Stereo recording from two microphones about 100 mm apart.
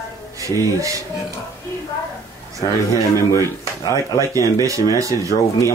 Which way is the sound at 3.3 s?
30° left (ahead or behind).